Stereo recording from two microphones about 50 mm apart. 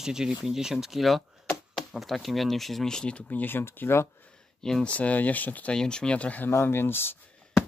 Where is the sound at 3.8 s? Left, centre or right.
Left.